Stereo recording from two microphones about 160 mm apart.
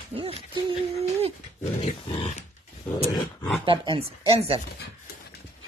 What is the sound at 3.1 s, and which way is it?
Wild animals, 25° left (ahead or behind).